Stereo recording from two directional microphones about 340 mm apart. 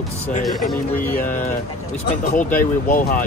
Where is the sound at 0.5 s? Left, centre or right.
Centre.